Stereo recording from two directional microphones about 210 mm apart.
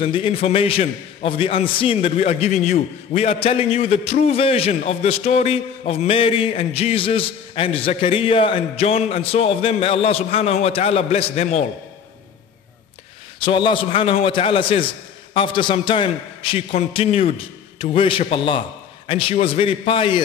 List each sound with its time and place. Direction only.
0.0 s a man's voice: 25° left (ahead or behind)
13.4 s a man's voice: 25° left (ahead or behind)